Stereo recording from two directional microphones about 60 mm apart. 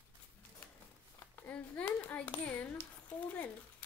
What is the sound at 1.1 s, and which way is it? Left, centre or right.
A child's voice, left.